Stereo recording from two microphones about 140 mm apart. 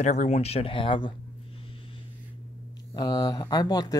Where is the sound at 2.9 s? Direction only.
30° left (ahead or behind).